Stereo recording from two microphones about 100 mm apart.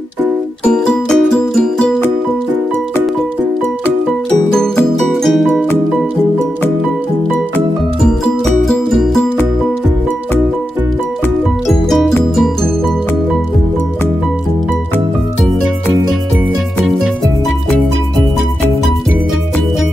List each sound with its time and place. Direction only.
0.7 s music: 5° left (ahead or behind)
4.5 s music: 5° left (ahead or behind)
8.6 s music: 5° left (ahead or behind)
11.6 s music: centre (ahead or behind)